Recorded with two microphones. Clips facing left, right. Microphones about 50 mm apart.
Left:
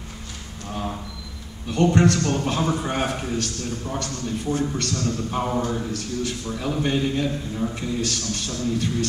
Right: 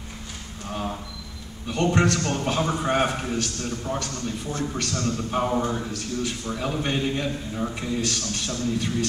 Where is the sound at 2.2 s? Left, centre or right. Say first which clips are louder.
Left 2 dB; centre.